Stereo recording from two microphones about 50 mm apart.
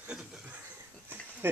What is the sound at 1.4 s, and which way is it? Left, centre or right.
Speech, right.